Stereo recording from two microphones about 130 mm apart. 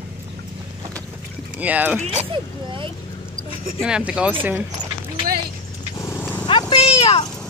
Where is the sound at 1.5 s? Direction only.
10° right (ahead or behind).